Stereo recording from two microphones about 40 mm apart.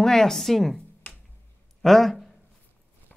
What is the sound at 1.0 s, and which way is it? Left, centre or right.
Finger snapping, left.